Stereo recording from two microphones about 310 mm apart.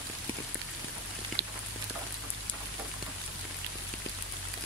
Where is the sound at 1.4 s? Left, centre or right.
Right.